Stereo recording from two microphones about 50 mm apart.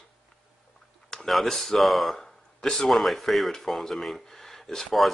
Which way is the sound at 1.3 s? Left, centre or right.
Centre.